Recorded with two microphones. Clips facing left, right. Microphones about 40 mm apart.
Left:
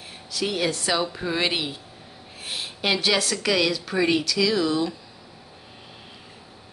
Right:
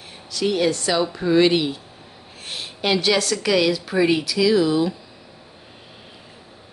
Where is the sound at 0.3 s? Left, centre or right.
Centre.